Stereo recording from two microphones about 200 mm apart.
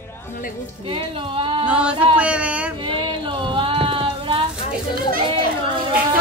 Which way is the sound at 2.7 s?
25° right (ahead or behind).